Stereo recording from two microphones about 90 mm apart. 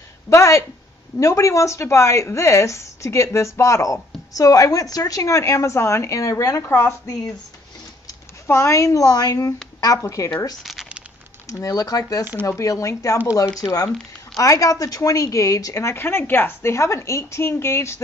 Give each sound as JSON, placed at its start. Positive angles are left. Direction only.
{"t": 0.3, "sound": "a woman's voice", "side_deg": 35}
{"t": 8.5, "sound": "a woman's voice", "side_deg": 30}
{"t": 10.6, "sound": "crumpling", "side_deg": 0}
{"t": 11.4, "sound": "a woman's voice", "side_deg": 40}